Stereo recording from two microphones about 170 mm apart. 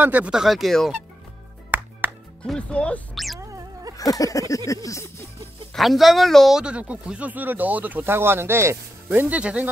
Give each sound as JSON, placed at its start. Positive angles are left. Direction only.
{"t": 0.0, "sound": "speech", "side_deg": -10}
{"t": 1.7, "sound": "music", "side_deg": -10}
{"t": 2.4, "sound": "speech", "side_deg": 5}
{"t": 3.3, "sound": "a sound", "side_deg": -20}
{"t": 3.9, "sound": "a sound", "side_deg": 20}
{"t": 4.6, "sound": "speech", "side_deg": 20}
{"t": 5.8, "sound": "speech", "side_deg": 0}